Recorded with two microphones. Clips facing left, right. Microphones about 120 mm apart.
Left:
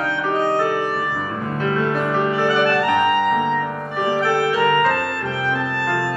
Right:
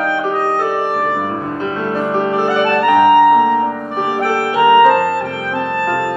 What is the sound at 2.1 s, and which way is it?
Music, 20° right (ahead or behind).